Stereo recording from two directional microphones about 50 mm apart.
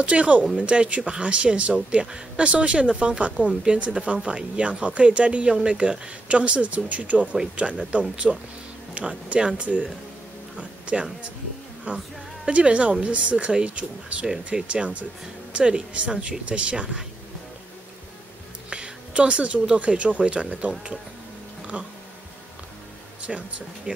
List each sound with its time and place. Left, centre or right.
0.0 s speech: right
18.7 s speech: right
21.7 s speech: right
23.3 s speech: centre